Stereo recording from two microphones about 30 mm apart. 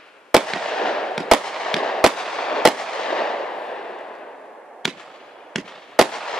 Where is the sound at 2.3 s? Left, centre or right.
Left.